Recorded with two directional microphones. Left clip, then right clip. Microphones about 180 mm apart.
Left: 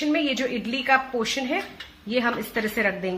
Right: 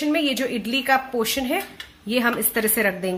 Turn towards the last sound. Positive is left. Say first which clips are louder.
# right 3 dB
turn(degrees=-30)  # may be behind; listen again after turning